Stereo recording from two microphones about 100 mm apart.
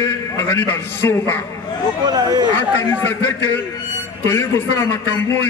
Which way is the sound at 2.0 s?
45° right (ahead or behind).